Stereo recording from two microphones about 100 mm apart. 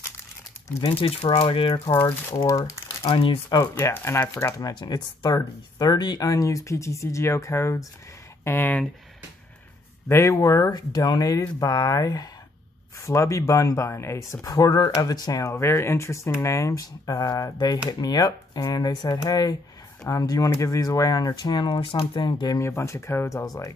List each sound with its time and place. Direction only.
0.9 s speech: 70° left (ahead or behind)
2.4 s speech: 35° left (ahead or behind)
3.0 s speech: 60° left (ahead or behind)
3.9 s speech: 25° left (ahead or behind)
10.0 s speech: 25° left (ahead or behind)
14.4 s speech: 35° left (ahead or behind)
22.6 s speech: 30° left (ahead or behind)